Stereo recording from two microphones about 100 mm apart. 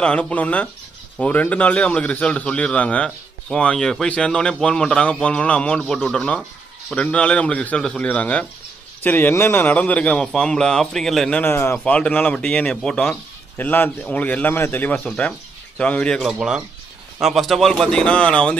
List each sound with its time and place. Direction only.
0.0 s speech: 10° left (ahead or behind)
11.3 s a man's voice: 20° left (ahead or behind); by 13.2 s 5° left (ahead or behind)
13.6 s a man's voice: 20° left (ahead or behind)
16.3 s speech: 5° right (ahead or behind); by 18.6 s 10° left (ahead or behind)